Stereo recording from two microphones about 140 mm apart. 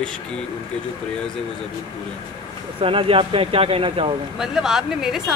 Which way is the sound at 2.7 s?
40° right (ahead or behind).